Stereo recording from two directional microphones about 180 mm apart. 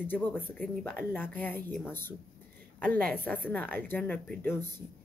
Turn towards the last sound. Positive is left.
turn(degrees=10)  # may be behind; listen again after turning